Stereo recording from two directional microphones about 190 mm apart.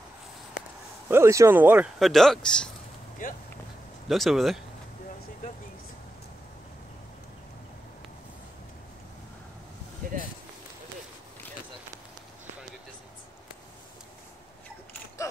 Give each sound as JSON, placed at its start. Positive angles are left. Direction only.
{"t": 1.0, "sound": "speech", "side_deg": -15}
{"t": 3.2, "sound": "speech", "side_deg": 45}
{"t": 4.1, "sound": "speech", "side_deg": 0}
{"t": 10.0, "sound": "a sound", "side_deg": -50}